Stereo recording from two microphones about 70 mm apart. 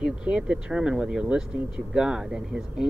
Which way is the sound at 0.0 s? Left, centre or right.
Centre.